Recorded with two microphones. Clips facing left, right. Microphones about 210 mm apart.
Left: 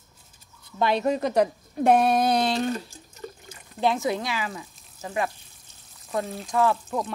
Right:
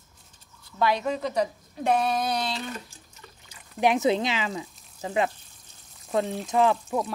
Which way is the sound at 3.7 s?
15° right (ahead or behind).